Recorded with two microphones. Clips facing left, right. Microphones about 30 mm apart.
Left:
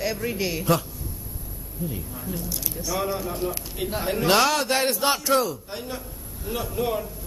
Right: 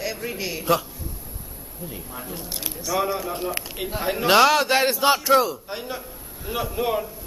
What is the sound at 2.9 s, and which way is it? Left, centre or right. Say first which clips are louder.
A man's voice: right 3 dB; centre.